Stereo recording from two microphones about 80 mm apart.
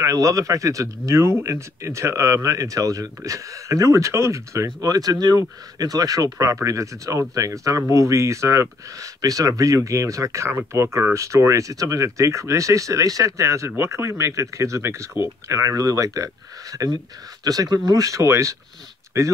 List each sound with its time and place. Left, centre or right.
0.0 s speech: right
4.8 s speech: right